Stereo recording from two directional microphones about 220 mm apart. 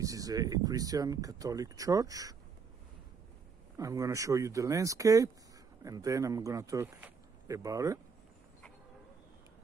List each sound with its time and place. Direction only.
0.0 s speech: 15° right (ahead or behind)
3.7 s a man's voice: 15° right (ahead or behind)